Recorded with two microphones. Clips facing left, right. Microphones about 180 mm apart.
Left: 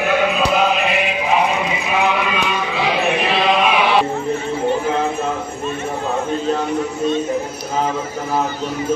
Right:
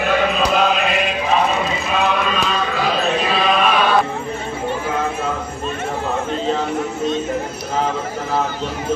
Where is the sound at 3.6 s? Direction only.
10° left (ahead or behind).